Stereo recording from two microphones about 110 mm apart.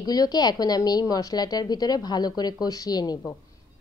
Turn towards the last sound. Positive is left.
turn(degrees=35)  # may be behind; listen again after turning